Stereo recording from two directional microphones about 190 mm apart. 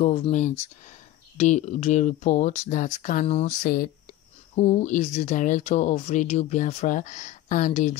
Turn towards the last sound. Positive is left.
turn(degrees=40)  # may be behind; listen again after turning